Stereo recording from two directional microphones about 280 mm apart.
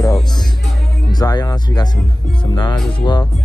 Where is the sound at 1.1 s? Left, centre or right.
Centre.